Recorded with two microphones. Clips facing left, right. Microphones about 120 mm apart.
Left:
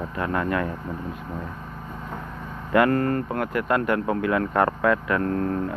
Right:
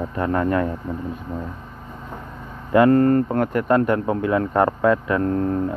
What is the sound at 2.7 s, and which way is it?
Speech, 30° right (ahead or behind).